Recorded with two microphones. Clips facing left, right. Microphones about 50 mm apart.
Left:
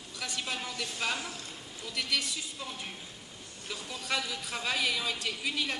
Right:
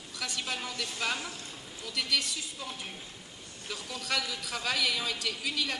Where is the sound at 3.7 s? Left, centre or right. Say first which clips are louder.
Right 1 dB; centre.